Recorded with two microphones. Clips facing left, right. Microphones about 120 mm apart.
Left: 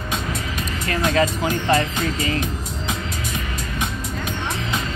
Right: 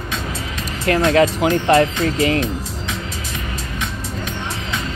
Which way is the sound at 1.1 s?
75° right (ahead or behind).